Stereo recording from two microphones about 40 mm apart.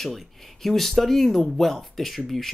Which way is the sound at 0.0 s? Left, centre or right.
Centre.